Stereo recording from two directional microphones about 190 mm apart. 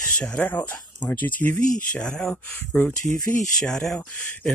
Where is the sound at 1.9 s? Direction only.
5° left (ahead or behind).